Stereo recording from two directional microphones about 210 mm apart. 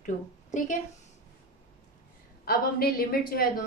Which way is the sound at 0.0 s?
35° left (ahead or behind).